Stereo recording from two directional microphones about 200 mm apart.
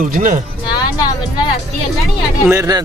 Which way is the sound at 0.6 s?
20° left (ahead or behind).